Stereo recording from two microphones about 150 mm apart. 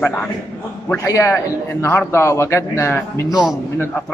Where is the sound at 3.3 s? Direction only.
5° right (ahead or behind).